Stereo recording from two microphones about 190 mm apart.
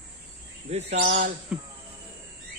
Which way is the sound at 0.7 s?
35° right (ahead or behind).